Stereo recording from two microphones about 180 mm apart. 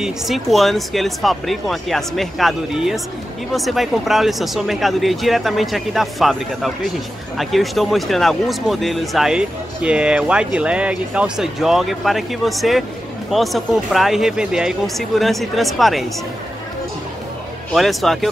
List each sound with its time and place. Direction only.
0.0 s speech: centre (ahead or behind)
17.7 s speech: centre (ahead or behind)